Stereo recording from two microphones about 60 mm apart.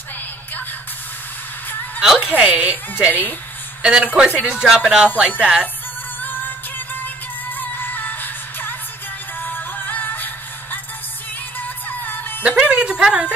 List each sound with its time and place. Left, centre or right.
2.0 s a woman's voice: centre
6.2 s music: left
12.0 s music: left
12.4 s speech: centre